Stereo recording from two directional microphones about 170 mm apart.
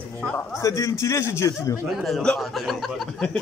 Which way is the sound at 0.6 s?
20° left (ahead or behind).